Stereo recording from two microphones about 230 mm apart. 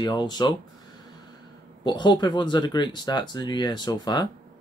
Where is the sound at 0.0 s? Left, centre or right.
Centre.